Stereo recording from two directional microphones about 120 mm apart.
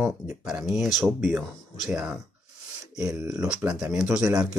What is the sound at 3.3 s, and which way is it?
Speech, 10° right (ahead or behind).